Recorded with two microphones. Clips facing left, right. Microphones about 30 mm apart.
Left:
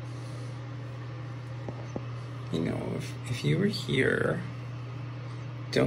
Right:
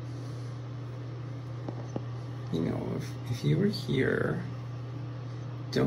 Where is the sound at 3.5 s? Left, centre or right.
Left.